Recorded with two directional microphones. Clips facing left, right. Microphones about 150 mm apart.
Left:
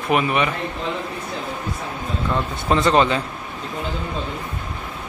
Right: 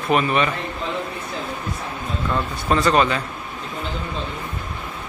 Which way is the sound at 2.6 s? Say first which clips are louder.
Left 1 dB; 20° left (ahead or behind).